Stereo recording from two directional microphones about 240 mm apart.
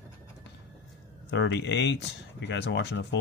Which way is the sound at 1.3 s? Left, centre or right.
Left.